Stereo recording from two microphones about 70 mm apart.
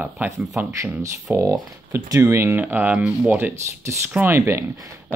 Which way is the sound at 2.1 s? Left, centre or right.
Right.